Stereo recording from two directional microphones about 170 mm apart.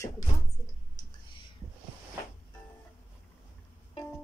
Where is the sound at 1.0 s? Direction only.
25° left (ahead or behind).